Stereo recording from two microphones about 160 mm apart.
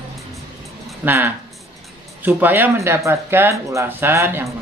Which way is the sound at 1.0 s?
10° right (ahead or behind).